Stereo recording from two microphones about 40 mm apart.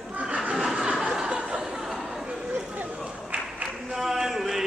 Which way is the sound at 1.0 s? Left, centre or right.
Centre.